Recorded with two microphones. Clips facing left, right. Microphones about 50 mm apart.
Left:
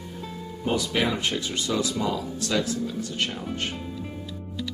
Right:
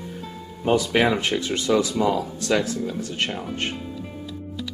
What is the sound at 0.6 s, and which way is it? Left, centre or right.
Speech, right.